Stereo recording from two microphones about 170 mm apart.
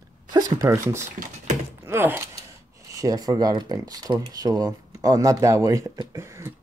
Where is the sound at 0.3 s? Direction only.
20° right (ahead or behind).